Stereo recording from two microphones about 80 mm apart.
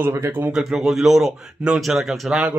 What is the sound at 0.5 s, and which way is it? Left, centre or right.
A man's voice, centre.